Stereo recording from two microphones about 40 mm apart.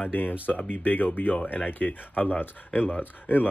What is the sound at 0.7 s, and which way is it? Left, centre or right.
Speech, left.